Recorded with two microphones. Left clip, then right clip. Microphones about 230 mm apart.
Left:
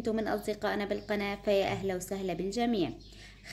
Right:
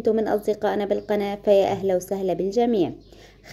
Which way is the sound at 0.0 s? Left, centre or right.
Centre.